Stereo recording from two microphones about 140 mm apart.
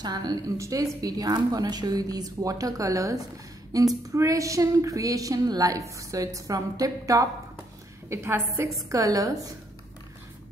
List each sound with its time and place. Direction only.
0.0 s a woman's voice: 30° right (ahead or behind)